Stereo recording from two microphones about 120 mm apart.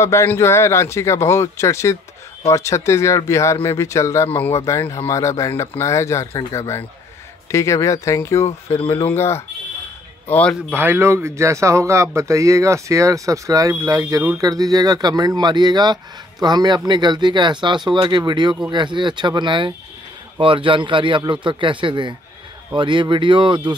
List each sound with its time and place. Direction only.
0.0 s speech: 25° left (ahead or behind)
10.7 s speech: 15° right (ahead or behind); by 23.7 s 40° right (ahead or behind)